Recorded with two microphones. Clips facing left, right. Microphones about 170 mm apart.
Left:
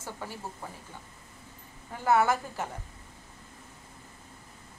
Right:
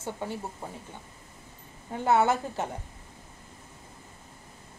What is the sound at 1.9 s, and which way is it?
Speech, 25° right (ahead or behind).